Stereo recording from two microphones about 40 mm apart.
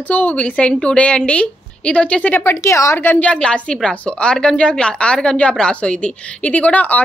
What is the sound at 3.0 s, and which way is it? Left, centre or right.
Speech, left.